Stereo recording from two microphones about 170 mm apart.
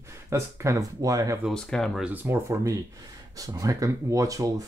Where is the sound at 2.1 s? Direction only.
10° right (ahead or behind).